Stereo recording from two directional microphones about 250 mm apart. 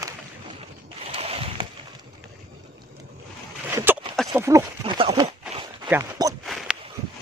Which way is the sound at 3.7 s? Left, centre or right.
Centre.